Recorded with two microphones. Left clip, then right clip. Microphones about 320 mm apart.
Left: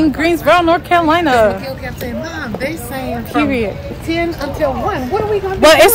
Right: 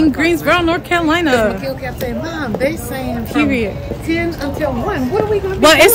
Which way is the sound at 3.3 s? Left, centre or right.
Centre.